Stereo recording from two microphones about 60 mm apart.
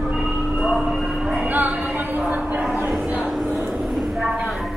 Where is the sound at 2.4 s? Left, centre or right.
Centre.